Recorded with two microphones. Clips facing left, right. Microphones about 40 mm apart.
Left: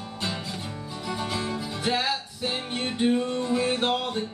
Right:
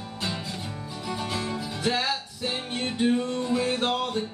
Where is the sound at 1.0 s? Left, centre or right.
Centre.